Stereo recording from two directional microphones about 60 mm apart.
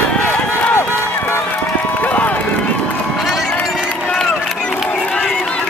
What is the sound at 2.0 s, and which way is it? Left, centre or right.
Run, left.